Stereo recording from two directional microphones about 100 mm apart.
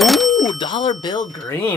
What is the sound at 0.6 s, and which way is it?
Speech, 60° left (ahead or behind).